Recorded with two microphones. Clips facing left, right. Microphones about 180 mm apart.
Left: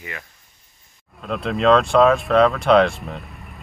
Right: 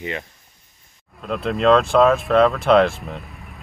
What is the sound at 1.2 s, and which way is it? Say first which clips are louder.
Speech: even; centre (ahead or behind).